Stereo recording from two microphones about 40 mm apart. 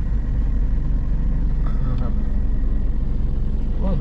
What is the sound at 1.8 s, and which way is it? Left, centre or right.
Vehicle, centre.